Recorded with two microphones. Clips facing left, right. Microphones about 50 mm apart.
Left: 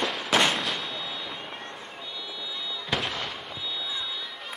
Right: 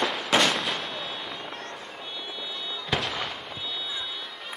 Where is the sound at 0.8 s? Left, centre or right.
Right.